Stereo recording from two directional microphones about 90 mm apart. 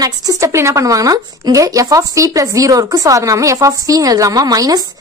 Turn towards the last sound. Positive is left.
turn(degrees=-45)  # may be behind; listen again after turning